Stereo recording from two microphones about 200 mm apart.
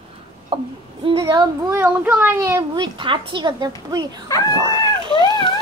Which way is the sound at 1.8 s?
10° right (ahead or behind).